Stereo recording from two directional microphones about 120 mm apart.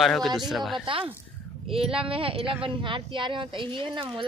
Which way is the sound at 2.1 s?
50° right (ahead or behind).